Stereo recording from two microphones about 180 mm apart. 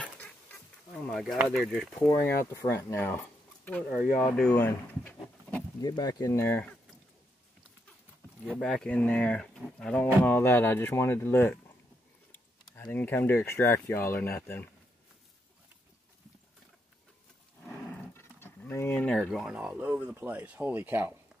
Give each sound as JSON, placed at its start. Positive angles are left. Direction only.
{"t": 0.0, "sound": "bee", "side_deg": 10}
{"t": 1.0, "sound": "speech", "side_deg": 0}
{"t": 2.0, "sound": "speech", "side_deg": 15}
{"t": 4.2, "sound": "speech", "side_deg": 5}
{"t": 5.8, "sound": "speech", "side_deg": 20}
{"t": 8.5, "sound": "speech", "side_deg": 5}
{"t": 12.9, "sound": "speech", "side_deg": 10}
{"t": 17.6, "sound": "speech", "side_deg": 10}